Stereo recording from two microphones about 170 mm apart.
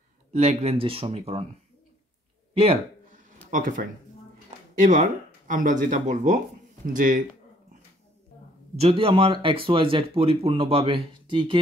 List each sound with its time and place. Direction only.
0.3 s speech: 40° right (ahead or behind)
2.5 s speech: 35° right (ahead or behind)
3.4 s speech: 50° right (ahead or behind)
8.7 s speech: 35° right (ahead or behind)